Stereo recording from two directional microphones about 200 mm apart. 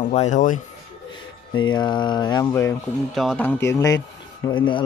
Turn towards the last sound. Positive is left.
turn(degrees=25)  # may be behind; listen again after turning